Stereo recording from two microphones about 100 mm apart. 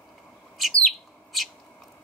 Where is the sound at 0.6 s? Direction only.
Centre (ahead or behind).